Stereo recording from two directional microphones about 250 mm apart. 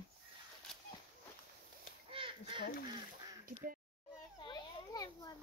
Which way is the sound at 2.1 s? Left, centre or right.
Right.